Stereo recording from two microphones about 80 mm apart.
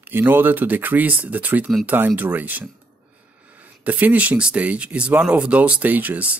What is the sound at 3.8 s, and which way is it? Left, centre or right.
Speech, centre.